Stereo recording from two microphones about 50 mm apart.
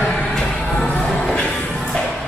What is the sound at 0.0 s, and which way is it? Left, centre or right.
Music, centre.